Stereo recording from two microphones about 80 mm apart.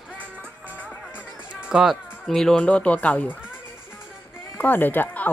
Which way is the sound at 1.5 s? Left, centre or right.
Centre.